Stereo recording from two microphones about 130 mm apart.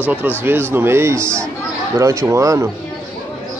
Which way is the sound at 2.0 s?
20° right (ahead or behind).